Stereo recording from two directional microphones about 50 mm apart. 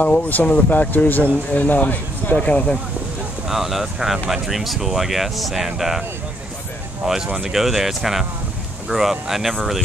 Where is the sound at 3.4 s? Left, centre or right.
Centre.